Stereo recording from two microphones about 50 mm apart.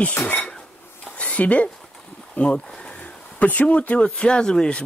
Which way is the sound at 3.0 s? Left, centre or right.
Left.